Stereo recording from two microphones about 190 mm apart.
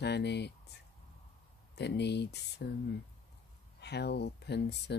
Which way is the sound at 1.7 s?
60° left (ahead or behind).